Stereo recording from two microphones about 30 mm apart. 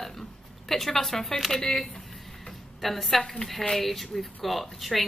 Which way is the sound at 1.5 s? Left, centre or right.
Left.